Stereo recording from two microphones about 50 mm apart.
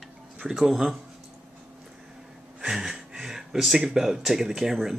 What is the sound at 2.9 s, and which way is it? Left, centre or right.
Speech, centre.